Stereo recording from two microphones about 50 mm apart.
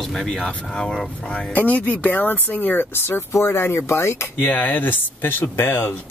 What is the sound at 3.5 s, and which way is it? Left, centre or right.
Speech, left.